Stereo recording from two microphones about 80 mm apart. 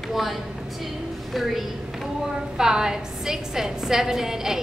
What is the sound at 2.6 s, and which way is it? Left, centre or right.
A woman's voice, centre.